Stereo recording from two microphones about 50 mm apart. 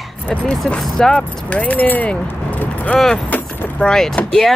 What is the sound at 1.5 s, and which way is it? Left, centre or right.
Speech, left.